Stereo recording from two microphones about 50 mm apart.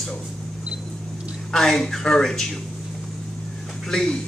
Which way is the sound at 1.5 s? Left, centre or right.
Centre.